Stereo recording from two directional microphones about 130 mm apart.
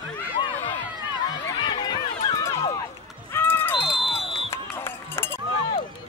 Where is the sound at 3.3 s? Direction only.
15° left (ahead or behind).